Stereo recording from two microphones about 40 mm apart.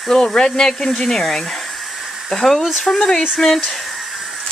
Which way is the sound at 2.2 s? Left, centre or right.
Centre.